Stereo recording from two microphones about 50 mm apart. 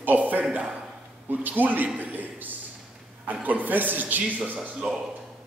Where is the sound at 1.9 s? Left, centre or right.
Right.